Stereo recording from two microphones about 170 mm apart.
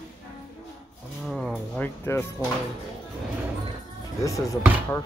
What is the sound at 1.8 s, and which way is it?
Speech, 15° left (ahead or behind).